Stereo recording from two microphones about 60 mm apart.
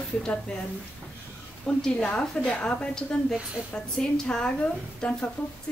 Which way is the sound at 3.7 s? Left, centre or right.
Centre.